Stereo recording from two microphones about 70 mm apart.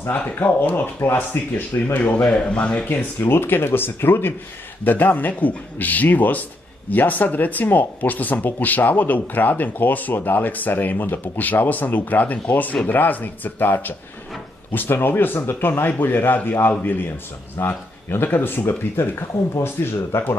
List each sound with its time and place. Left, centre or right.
0.1 s speech: left
3.0 s speech: left